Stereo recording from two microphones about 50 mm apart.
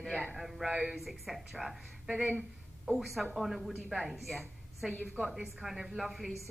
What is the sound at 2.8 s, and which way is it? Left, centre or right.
A woman's voice, centre.